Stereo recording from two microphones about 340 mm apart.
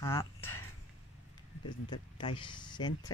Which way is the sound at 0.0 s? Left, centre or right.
Centre.